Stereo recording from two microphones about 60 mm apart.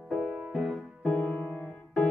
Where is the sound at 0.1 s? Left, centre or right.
Centre.